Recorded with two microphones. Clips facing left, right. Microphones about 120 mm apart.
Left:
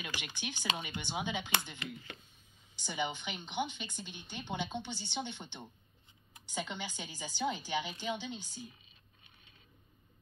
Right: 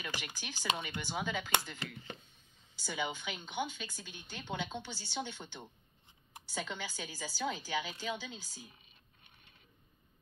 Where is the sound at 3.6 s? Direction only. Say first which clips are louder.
Left 2 dB; 20° left (ahead or behind).